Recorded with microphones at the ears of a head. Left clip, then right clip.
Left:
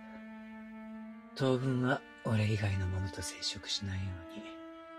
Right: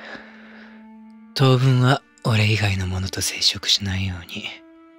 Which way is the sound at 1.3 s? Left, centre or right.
Right.